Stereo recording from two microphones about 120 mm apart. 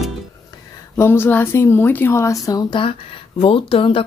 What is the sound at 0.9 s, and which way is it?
Speech, 20° left (ahead or behind).